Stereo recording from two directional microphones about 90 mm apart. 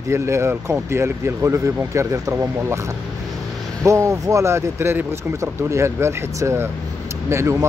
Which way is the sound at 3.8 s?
35° right (ahead or behind).